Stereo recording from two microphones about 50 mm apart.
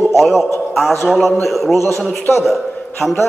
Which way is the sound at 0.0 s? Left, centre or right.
Centre.